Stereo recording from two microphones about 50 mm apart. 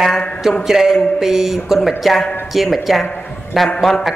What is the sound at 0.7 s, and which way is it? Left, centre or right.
A woman's voice, centre.